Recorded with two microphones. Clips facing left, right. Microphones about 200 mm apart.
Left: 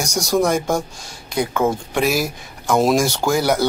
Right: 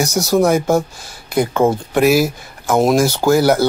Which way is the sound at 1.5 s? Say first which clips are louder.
Right 4 dB; 20° right (ahead or behind).